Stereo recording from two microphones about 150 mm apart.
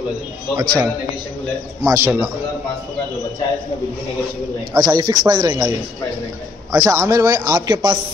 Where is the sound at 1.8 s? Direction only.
20° right (ahead or behind).